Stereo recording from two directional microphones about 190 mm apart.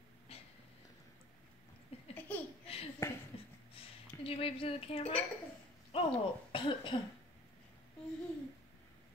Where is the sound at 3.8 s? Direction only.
30° left (ahead or behind).